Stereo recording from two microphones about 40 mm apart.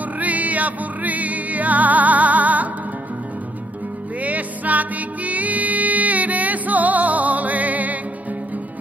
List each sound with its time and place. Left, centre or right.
0.2 s music: right
4.2 s music: right